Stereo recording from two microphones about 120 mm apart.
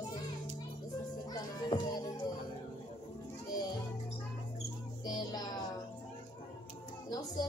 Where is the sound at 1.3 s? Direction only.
35° left (ahead or behind).